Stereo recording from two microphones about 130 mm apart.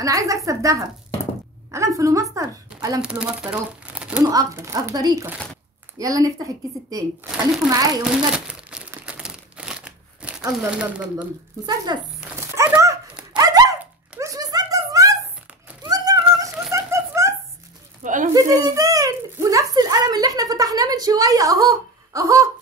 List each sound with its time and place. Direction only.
0.0 s a woman's voice: 25° right (ahead or behind)
3.0 s speech: 5° right (ahead or behind)
4.2 s a woman's voice: 30° right (ahead or behind)
8.0 s crumpling: 5° right (ahead or behind)
10.7 s speech: 10° right (ahead or behind)
11.6 s speech: 30° right (ahead or behind)
12.4 s dog: 20° right (ahead or behind)
13.4 s a sound: 30° right (ahead or behind)
16.7 s giggle: 20° right (ahead or behind)
18.0 s a sound: 80° right
18.3 s a sound: 25° right (ahead or behind)